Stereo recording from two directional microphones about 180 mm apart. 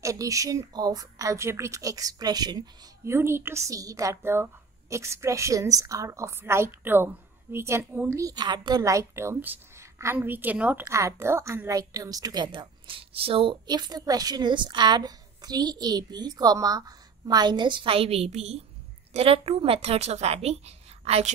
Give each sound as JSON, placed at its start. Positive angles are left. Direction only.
{"t": 0.0, "sound": "a woman's voice", "side_deg": -20}